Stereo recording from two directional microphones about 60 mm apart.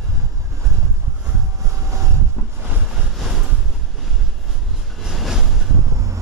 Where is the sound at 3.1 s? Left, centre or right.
Centre.